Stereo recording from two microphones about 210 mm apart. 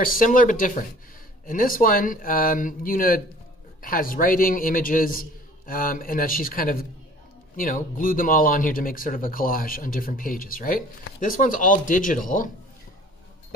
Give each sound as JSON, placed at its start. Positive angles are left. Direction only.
{"t": 0.0, "sound": "speech", "side_deg": 40}